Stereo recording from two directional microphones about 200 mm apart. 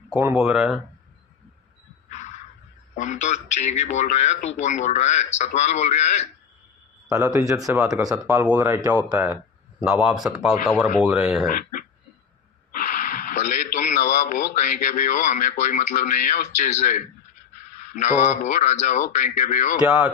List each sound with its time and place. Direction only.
0.1 s speech: 10° right (ahead or behind)
2.0 s a sound: 35° left (ahead or behind)
3.0 s a man's voice: 35° left (ahead or behind)
7.1 s speech: 15° right (ahead or behind)
11.4 s a man's voice: 45° left (ahead or behind)